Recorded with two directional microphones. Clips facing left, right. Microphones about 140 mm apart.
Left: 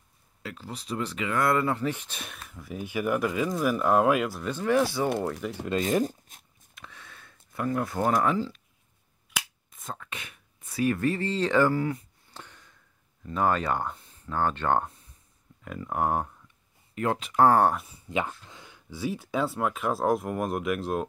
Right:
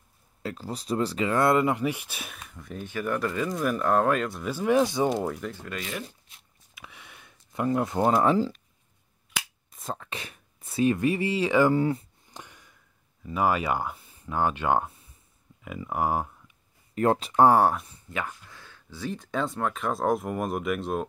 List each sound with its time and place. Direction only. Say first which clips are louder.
0.4 s speech: right 5 dB; 40° right (ahead or behind)
1.5 s speech: right 2 dB; 15° right (ahead or behind); by 4.4 s 5° left (ahead or behind)
4.4 s speech: right 2 dB; 10° right (ahead or behind)
5.4 s speech: left 2 dB; 10° left (ahead or behind)
5.8 s a sound: left 10 dB; 45° left (ahead or behind)
6.7 s a sound: even; 10° right (ahead or behind); by 8.5 s 35° right (ahead or behind)
9.7 s speech: right 4 dB; 35° right (ahead or behind); by 11.7 s 10° right (ahead or behind)
11.7 s speech: right 4 dB; 25° right (ahead or behind)
12.3 s a sound: right 1 dB; 15° right (ahead or behind)
13.2 s speech: right 1 dB; 10° right (ahead or behind)
16.9 s speech: right 5 dB; 40° right (ahead or behind)
17.5 s speech: right 1 dB; 5° right (ahead or behind)
18.0 s speech: left 4 dB; 20° left (ahead or behind); by 21.0 s centre (ahead or behind)